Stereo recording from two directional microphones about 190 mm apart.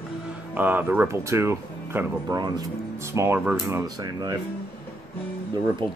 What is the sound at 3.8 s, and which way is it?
Speech, 20° right (ahead or behind).